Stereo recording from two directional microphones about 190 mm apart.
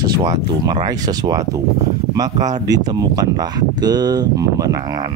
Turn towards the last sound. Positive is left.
turn(degrees=-20)  # may be behind; listen again after turning